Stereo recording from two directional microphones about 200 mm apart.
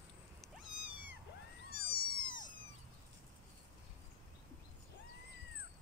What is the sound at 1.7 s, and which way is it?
Cat, 50° left (ahead or behind).